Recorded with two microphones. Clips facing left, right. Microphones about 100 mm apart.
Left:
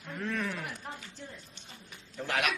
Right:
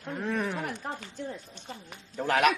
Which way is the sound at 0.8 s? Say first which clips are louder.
Right 7 dB; 55° right (ahead or behind).